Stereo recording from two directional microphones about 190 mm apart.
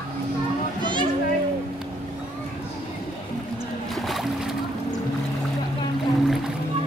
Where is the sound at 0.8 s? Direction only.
25° right (ahead or behind).